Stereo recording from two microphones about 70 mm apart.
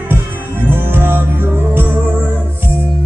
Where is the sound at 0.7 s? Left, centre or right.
Right.